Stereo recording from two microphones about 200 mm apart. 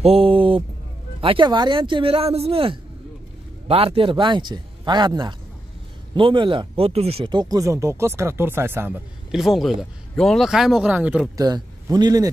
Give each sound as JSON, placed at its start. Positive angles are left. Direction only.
{"t": 0.0, "sound": "speech", "side_deg": -30}
{"t": 11.4, "sound": "speech", "side_deg": -20}